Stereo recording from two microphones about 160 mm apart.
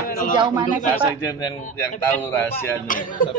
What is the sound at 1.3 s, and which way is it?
A man's voice, 20° left (ahead or behind).